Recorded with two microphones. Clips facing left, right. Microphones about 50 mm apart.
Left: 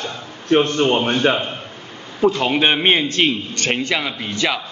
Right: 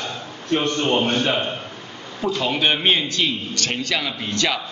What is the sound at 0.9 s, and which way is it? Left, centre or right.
Speech, left.